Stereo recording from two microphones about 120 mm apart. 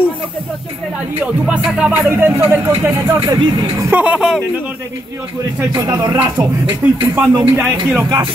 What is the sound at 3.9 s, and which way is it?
Music, 10° right (ahead or behind).